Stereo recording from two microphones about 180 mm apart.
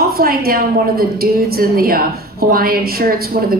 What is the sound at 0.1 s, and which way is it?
A woman's voice, 55° right (ahead or behind).